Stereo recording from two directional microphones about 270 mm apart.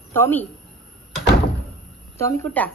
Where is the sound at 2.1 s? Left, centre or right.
Centre.